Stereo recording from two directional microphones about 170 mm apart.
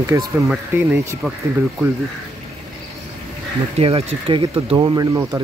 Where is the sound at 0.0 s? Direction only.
20° right (ahead or behind).